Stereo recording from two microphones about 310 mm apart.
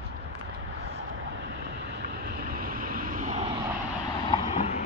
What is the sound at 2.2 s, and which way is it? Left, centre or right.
Vehicle, right.